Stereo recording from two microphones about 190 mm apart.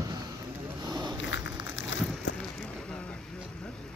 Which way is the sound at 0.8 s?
20° right (ahead or behind).